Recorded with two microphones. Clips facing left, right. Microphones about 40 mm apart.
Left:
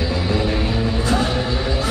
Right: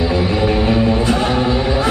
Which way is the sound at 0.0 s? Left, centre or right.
Centre.